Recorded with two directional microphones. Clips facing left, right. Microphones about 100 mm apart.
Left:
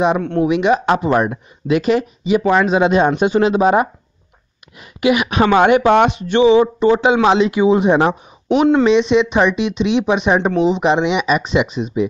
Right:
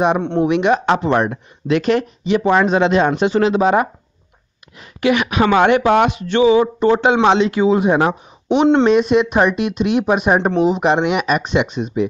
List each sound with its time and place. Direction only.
0.4 s speech: centre (ahead or behind)
2.8 s speech: 15° left (ahead or behind)
5.3 s speech: 25° left (ahead or behind)
6.8 s speech: 5° left (ahead or behind)
7.4 s speech: 15° left (ahead or behind)
8.5 s speech: 25° right (ahead or behind)
8.8 s speech: 5° right (ahead or behind)